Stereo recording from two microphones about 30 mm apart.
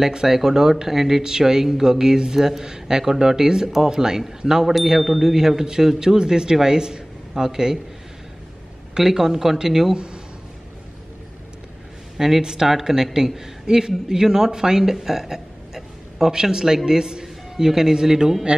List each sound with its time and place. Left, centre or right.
0.0 s speech: centre
8.9 s speech: centre
9.9 s a sound: right
12.2 s speech: centre